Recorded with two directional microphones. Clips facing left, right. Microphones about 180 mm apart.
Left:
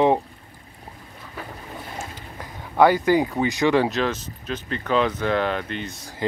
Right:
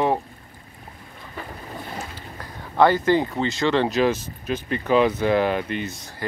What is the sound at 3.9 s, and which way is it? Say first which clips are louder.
Speech: right 4 dB; 10° right (ahead or behind).